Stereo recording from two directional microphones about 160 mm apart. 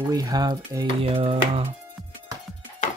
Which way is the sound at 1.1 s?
35° right (ahead or behind).